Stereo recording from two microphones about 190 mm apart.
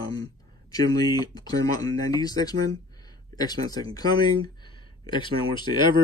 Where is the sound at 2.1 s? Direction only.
20° left (ahead or behind).